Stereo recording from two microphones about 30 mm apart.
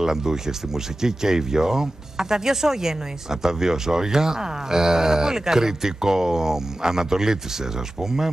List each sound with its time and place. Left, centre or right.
0.0 s speech: centre